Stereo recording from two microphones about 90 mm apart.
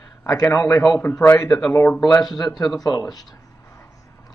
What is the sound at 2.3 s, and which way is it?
Speech, 50° left (ahead or behind).